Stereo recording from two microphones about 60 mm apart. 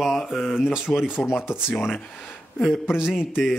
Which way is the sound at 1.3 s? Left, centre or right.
Centre.